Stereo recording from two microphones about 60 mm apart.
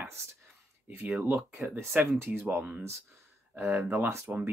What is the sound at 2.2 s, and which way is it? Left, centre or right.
Speech, right.